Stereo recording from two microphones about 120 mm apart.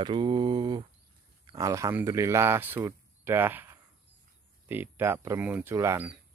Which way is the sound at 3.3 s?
15° right (ahead or behind).